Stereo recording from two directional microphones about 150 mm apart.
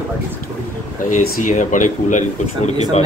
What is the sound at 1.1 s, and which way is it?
Speech, 55° left (ahead or behind).